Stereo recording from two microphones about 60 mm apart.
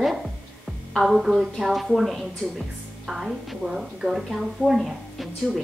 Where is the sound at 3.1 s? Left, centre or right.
Centre.